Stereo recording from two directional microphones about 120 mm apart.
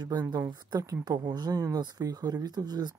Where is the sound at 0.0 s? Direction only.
35° right (ahead or behind).